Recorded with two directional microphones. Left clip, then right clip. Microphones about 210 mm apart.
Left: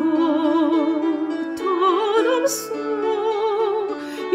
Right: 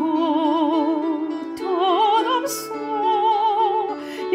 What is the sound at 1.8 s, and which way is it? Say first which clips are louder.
Music: right 1 dB; 10° right (ahead or behind).